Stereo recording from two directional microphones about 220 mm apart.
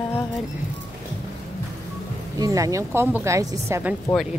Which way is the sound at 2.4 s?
15° right (ahead or behind).